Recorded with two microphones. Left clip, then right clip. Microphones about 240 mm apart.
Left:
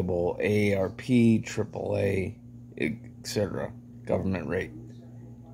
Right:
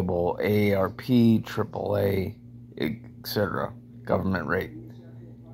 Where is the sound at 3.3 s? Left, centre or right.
Centre.